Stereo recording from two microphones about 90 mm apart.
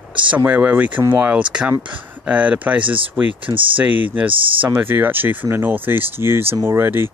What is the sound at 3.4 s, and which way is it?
Speech, 70° right (ahead or behind).